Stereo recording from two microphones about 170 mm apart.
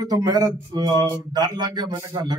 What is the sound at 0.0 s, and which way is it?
Speech, 25° right (ahead or behind).